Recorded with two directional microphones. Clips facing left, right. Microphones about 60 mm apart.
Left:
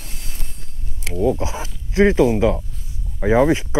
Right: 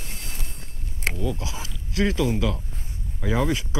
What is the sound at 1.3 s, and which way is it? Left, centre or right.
Speech, left.